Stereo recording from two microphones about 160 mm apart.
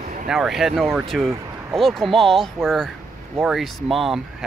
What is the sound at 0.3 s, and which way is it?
Speech, 5° right (ahead or behind).